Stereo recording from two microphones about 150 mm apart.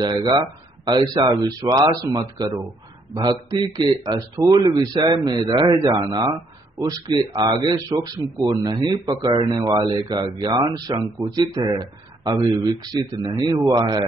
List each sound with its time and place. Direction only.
0.0 s speech: 30° right (ahead or behind)
12.9 s speech: 25° right (ahead or behind)